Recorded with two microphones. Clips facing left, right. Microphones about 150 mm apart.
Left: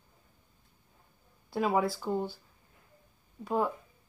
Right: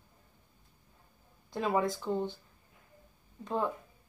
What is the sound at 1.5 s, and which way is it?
Speech, 5° left (ahead or behind).